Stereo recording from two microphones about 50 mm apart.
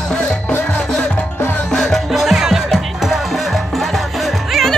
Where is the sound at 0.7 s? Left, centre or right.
Left.